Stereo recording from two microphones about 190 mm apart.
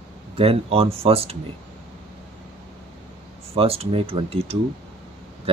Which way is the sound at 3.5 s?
30° right (ahead or behind).